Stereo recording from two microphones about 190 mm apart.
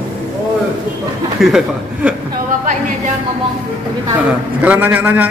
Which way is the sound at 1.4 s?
Centre (ahead or behind).